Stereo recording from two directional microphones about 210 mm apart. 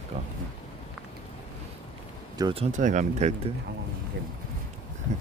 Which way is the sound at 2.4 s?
25° right (ahead or behind).